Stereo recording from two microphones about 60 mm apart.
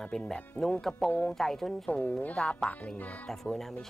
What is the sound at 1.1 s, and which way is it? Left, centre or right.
Speech, left.